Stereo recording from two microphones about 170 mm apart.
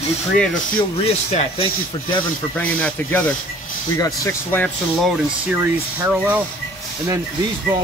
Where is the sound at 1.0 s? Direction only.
35° left (ahead or behind).